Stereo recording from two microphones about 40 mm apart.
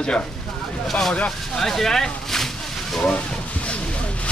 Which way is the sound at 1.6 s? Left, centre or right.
Centre.